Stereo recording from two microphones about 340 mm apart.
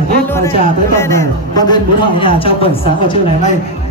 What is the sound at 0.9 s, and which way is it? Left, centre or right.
A man's voice, centre.